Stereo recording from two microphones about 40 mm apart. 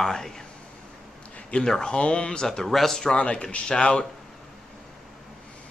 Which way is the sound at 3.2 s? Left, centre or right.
Left.